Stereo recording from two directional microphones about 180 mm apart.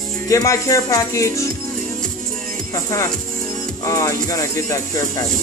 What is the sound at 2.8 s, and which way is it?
Speech, 15° left (ahead or behind).